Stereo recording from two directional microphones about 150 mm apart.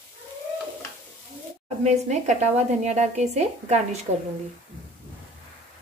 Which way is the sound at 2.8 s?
50° right (ahead or behind).